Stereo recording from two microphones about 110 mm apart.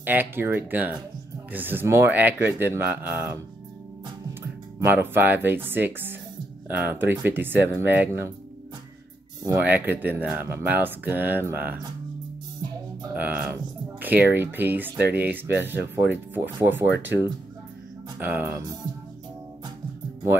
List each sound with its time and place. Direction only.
0.0 s speech: 15° right (ahead or behind)
9.6 s speech: 15° right (ahead or behind)
13.1 s speech: 15° right (ahead or behind)
18.2 s speech: 20° right (ahead or behind)